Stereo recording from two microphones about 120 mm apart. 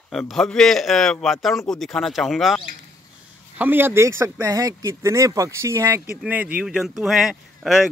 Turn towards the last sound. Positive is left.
turn(degrees=-5)  # may be behind; listen again after turning